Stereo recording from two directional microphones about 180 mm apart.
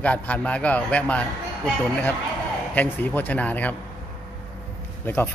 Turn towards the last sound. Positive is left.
turn(degrees=10)  # may be behind; listen again after turning